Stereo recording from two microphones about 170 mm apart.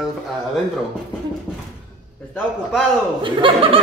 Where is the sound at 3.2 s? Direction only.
30° right (ahead or behind).